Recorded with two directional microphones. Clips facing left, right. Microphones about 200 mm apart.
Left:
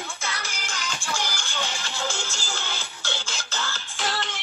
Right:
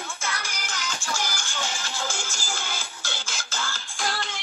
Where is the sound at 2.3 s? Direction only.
15° right (ahead or behind).